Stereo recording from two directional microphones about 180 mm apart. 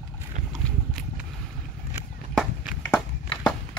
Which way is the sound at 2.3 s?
Centre (ahead or behind).